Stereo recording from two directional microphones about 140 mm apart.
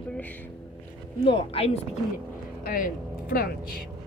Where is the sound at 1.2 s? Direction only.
40° left (ahead or behind).